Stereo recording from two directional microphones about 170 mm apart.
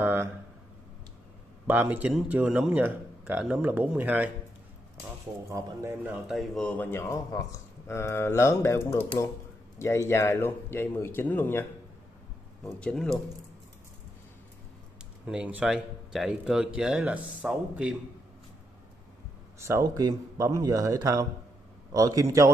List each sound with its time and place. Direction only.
0.0 s a sound: 15° right (ahead or behind)
1.7 s speech: 10° right (ahead or behind)
5.5 s speech: 15° right (ahead or behind)
6.2 s speech: centre (ahead or behind)
12.6 s speech: 5° left (ahead or behind)
15.2 s speech: 5° right (ahead or behind)
19.6 s speech: 15° right (ahead or behind)